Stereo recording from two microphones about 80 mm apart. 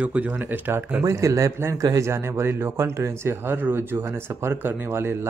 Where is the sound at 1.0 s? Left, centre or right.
Right.